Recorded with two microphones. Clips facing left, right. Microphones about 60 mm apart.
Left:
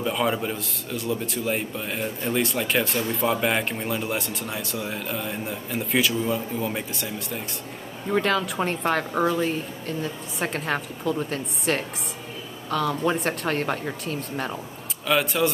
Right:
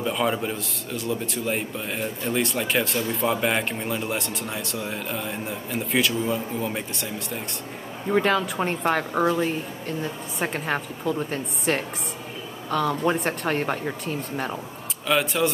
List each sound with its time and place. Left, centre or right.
0.0 s a woman's voice: centre
9.2 s a woman's voice: centre
10.4 s a woman's voice: centre